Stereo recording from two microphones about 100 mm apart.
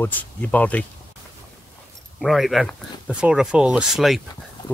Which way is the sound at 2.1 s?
Centre (ahead or behind).